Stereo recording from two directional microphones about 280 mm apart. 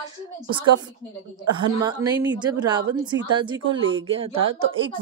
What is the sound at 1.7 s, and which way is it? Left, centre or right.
Speech, centre.